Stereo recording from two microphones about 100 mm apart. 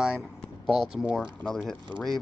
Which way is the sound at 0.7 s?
5° right (ahead or behind).